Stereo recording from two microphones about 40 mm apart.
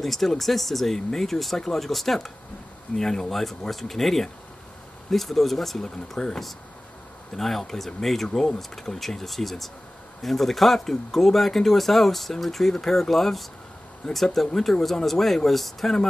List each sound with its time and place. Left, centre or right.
0.0 s speech: centre